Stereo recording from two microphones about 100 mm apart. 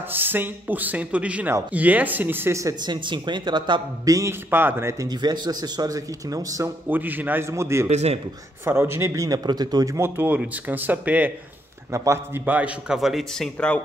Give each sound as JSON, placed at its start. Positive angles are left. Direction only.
{"t": 0.1, "sound": "speech", "side_deg": -20}
{"t": 2.8, "sound": "speech", "side_deg": -50}
{"t": 4.1, "sound": "a man's voice", "side_deg": -25}
{"t": 5.0, "sound": "speech", "side_deg": -45}
{"t": 6.9, "sound": "a man's voice", "side_deg": -20}
{"t": 9.9, "sound": "speech", "side_deg": -25}
{"t": 11.9, "sound": "speech", "side_deg": -30}
{"t": 12.4, "sound": "speech", "side_deg": -15}